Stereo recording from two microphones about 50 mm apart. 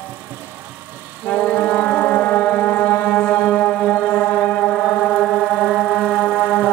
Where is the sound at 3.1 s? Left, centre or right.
Left.